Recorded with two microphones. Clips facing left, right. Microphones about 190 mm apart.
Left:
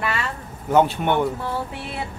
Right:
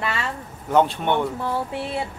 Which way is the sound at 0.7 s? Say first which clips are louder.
Left 1 dB; 5° left (ahead or behind).